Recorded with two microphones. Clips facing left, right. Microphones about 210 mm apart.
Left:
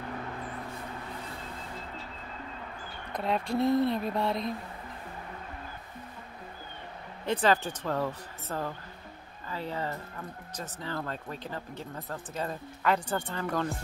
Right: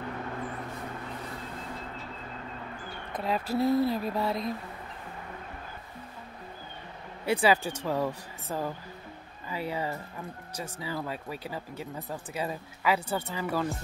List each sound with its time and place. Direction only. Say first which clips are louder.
3.1 s speech: even; centre (ahead or behind)
7.2 s speech: right 1 dB; 10° right (ahead or behind)